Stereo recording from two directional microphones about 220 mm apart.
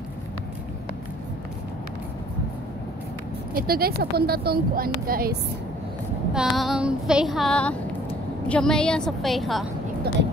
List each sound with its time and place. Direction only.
3.5 s speech: 45° right (ahead or behind)
6.3 s child singing: centre (ahead or behind)